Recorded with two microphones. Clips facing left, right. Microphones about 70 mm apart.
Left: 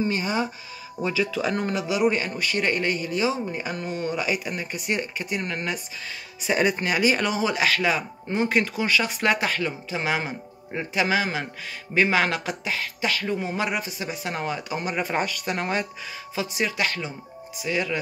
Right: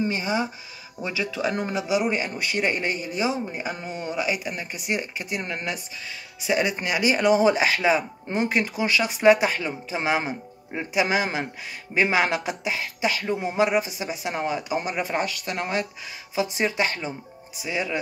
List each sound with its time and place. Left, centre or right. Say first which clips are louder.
0.0 s speech: even; centre
1.5 s speech: right 1 dB; centre
6.4 s speech: left 1 dB; centre
7.4 s speech: right 3 dB; right
8.5 s speech: left 1 dB; centre
14.9 s speech: even; centre
16.5 s speech: left 2 dB; right